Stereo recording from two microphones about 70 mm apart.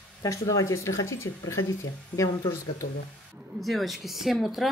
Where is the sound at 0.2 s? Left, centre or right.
Left.